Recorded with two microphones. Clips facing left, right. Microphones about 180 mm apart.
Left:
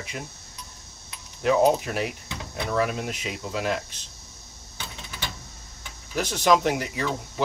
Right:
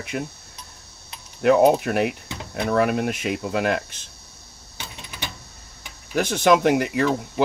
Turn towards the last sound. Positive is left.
turn(degrees=-60)  # may be behind; listen again after turning